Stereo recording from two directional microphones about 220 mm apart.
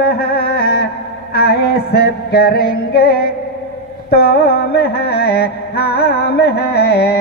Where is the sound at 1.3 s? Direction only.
45° left (ahead or behind).